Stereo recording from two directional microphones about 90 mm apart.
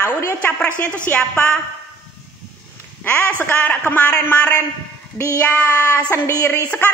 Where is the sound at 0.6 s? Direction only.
20° left (ahead or behind).